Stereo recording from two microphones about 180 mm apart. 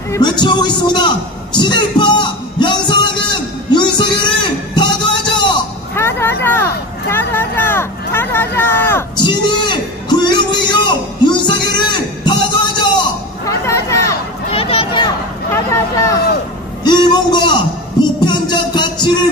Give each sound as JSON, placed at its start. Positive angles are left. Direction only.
{"t": 0.1, "sound": "a man's voice", "side_deg": 25}
{"t": 2.0, "sound": "music", "side_deg": 25}
{"t": 5.9, "sound": "vehicle", "side_deg": 15}
{"t": 6.4, "sound": "speech", "side_deg": 10}
{"t": 9.1, "sound": "a sound", "side_deg": 25}
{"t": 13.7, "sound": "chatter", "side_deg": 15}
{"t": 14.5, "sound": "a sound", "side_deg": 30}
{"t": 15.5, "sound": "a man's voice", "side_deg": 15}
{"t": 18.2, "sound": "music", "side_deg": 25}